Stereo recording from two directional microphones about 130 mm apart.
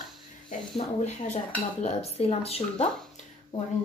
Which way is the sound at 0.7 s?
60° left (ahead or behind).